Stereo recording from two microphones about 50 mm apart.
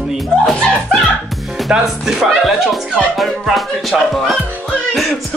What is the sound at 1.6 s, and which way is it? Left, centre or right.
Music, centre.